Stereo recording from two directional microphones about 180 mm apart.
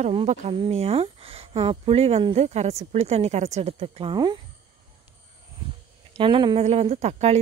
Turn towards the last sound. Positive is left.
turn(degrees=-40)  # may be behind; listen again after turning